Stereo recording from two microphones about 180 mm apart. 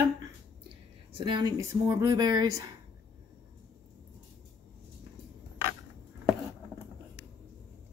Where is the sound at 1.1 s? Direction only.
25° right (ahead or behind).